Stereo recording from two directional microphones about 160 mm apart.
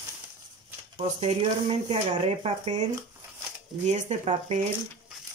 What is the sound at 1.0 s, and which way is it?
Speech, 40° right (ahead or behind).